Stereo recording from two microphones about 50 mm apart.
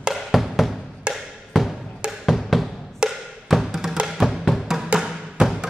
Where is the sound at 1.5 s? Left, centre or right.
Centre.